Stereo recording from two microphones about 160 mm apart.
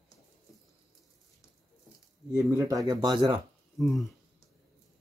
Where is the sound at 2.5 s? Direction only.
20° right (ahead or behind).